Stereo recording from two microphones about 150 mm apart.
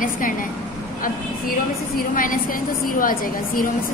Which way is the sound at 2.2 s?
65° left (ahead or behind).